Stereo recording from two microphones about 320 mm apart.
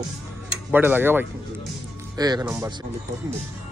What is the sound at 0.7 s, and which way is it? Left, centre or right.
A man's voice, centre.